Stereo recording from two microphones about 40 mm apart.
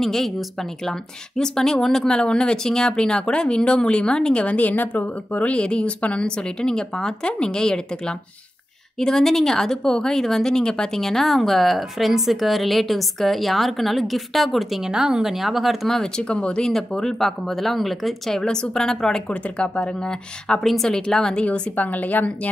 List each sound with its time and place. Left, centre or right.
0.0 s speech: centre; by 5.5 s left
5.5 s a woman's voice: left; by 14.9 s centre
14.9 s speech: centre
15.2 s a woman's voice: centre
15.9 s a woman's voice: centre
16.3 s speech: left
16.6 s a woman's voice: centre
18.4 s a woman's voice: left
19.2 s speech: left
20.6 s a woman's voice: centre
21.5 s a woman's voice: left